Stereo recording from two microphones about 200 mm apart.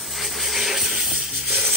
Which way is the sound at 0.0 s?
Centre (ahead or behind).